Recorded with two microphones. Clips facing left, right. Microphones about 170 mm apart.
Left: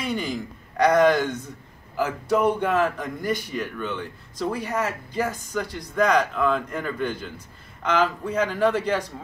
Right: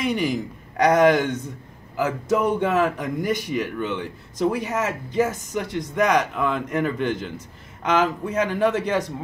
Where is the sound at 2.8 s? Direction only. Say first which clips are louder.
Right 2 dB; 15° right (ahead or behind).